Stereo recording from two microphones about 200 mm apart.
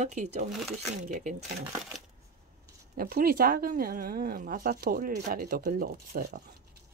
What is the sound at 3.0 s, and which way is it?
Speech, 50° right (ahead or behind).